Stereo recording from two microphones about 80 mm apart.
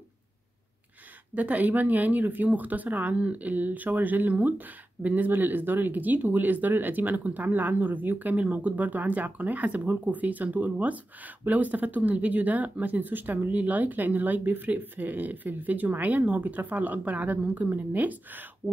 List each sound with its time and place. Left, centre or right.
1.3 s speech: centre